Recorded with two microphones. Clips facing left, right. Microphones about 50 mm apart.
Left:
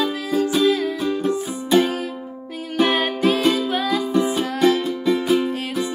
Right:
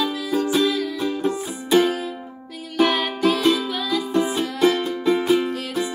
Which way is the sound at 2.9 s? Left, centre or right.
Left.